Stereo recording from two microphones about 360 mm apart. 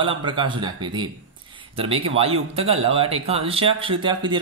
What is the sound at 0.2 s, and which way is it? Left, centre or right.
Speech, centre.